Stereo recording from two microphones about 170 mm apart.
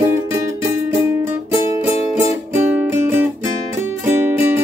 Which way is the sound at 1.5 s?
15° right (ahead or behind).